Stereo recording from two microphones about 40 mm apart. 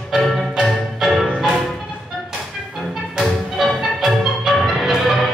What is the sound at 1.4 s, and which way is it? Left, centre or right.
Music, centre.